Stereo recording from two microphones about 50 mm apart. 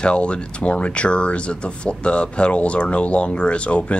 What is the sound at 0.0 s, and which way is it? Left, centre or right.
Speech, left.